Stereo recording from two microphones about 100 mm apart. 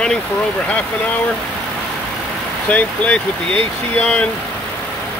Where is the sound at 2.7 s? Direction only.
15° left (ahead or behind).